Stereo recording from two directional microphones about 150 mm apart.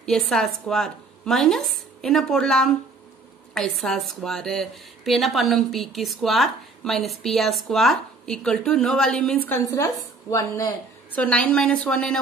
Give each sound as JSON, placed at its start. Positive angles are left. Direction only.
{"t": 0.0, "sound": "a woman's voice", "side_deg": 5}
{"t": 9.5, "sound": "a woman's voice", "side_deg": 20}
{"t": 11.1, "sound": "a woman's voice", "side_deg": 10}